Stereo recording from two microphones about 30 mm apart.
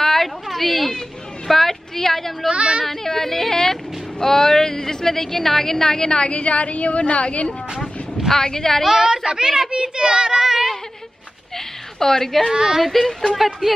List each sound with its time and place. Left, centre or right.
0.0 s a sound: centre
1.5 s a woman's voice: centre
2.5 s a woman's voice: right
2.9 s speech: centre; by 7.5 s left
8.3 s speech: centre
8.8 s a woman's voice: centre
11.5 s a sound: centre
12.5 s a child's voice: right
12.8 s speech: centre